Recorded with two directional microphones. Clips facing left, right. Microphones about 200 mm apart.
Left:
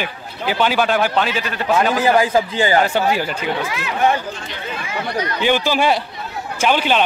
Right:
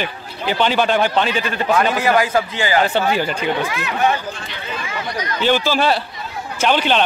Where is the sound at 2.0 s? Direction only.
30° left (ahead or behind).